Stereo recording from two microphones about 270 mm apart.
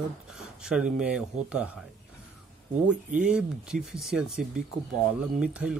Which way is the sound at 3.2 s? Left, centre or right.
Centre.